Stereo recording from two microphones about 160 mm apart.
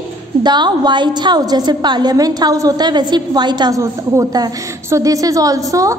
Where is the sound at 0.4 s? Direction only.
25° right (ahead or behind).